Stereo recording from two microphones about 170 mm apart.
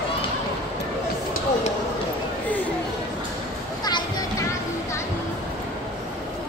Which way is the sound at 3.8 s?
20° left (ahead or behind).